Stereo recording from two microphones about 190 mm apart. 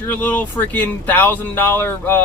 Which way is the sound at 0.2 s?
10° left (ahead or behind).